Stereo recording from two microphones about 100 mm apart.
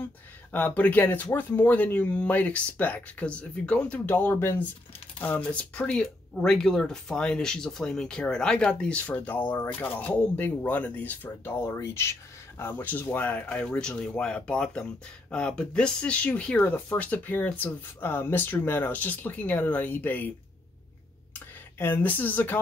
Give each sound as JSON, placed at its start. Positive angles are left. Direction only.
{"t": 0.5, "sound": "speech", "side_deg": 20}
{"t": 21.3, "sound": "speech", "side_deg": 20}